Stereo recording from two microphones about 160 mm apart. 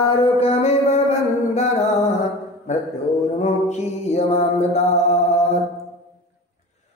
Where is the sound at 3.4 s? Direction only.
45° left (ahead or behind).